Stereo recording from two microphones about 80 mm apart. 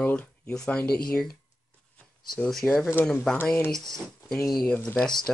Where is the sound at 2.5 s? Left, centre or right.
Centre.